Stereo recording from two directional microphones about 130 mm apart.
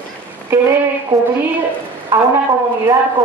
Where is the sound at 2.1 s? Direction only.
20° right (ahead or behind).